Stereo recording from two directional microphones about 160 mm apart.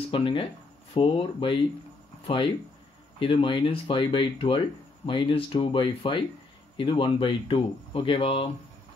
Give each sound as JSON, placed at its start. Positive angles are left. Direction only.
{"t": 0.1, "sound": "speech", "side_deg": 35}
{"t": 3.2, "sound": "speech", "side_deg": 35}